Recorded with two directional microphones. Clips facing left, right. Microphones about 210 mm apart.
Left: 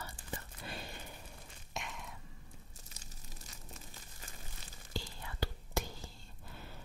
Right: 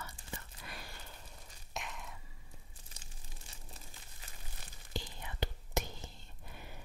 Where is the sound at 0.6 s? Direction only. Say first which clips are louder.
Left 5 dB; 25° left (ahead or behind).